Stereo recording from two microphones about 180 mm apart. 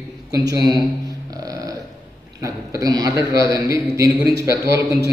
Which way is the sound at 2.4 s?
20° right (ahead or behind).